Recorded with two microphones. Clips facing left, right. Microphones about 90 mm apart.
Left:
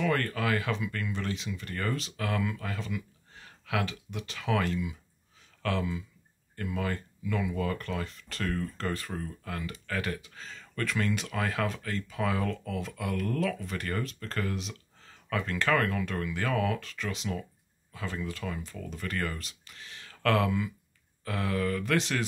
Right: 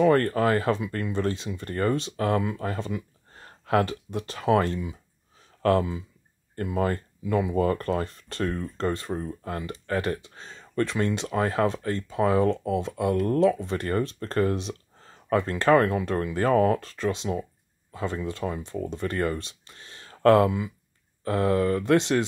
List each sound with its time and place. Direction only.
0.0 s speech: 35° right (ahead or behind)